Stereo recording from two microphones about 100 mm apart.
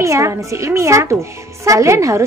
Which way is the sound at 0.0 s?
30° right (ahead or behind).